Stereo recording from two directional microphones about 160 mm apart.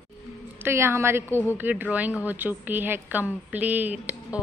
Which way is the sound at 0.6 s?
15° right (ahead or behind).